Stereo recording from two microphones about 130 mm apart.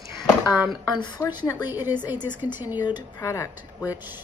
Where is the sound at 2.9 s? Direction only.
25° left (ahead or behind).